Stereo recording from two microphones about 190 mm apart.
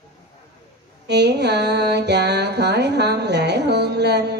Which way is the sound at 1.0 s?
60° right (ahead or behind).